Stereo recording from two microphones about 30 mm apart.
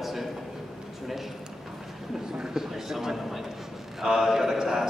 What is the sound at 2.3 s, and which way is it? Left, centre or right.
A man's voice, centre.